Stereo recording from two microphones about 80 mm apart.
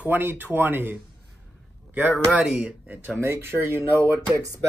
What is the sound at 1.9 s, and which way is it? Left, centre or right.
Speech, centre.